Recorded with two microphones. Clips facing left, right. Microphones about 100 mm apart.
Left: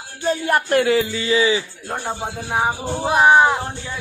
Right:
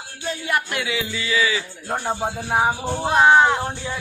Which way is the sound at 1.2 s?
30° left (ahead or behind).